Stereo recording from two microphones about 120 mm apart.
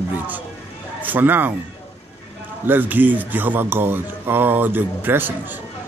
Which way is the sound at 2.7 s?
15° right (ahead or behind).